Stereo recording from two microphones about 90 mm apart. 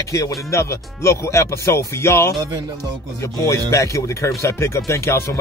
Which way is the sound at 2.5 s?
50° right (ahead or behind).